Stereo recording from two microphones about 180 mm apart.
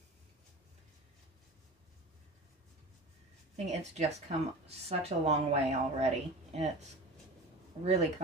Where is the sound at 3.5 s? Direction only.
35° right (ahead or behind).